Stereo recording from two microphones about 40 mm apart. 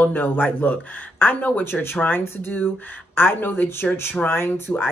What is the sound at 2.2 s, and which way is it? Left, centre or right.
Speech, left.